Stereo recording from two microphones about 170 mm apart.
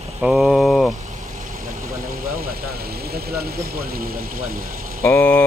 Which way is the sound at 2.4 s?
65° right (ahead or behind).